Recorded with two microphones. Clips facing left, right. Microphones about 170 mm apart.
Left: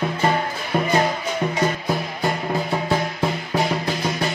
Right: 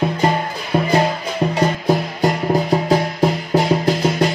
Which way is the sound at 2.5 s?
40° right (ahead or behind).